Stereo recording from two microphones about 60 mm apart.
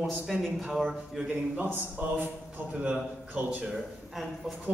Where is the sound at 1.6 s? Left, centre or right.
Right.